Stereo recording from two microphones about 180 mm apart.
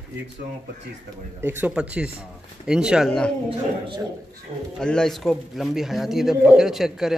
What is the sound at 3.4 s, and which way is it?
Speech, 30° right (ahead or behind).